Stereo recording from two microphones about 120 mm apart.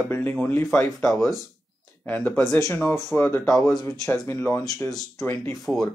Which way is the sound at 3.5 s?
30° left (ahead or behind).